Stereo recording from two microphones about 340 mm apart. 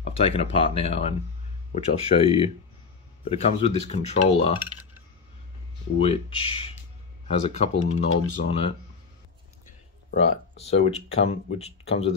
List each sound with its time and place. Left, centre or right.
0.0 s speech: centre
5.9 s speech: centre
10.2 s speech: left
10.6 s speech: centre